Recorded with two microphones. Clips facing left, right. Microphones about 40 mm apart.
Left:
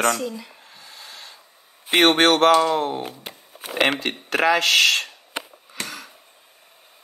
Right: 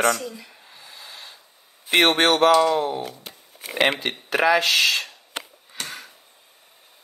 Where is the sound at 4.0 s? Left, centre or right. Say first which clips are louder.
Even; left.